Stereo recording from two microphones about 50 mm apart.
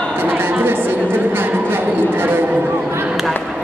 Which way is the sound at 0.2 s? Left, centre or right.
Right.